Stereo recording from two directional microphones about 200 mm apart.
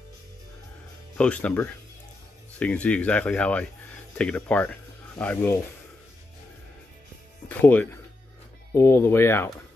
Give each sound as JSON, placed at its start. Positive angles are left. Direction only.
{"t": 1.1, "sound": "speech", "side_deg": 5}
{"t": 7.4, "sound": "speech", "side_deg": 10}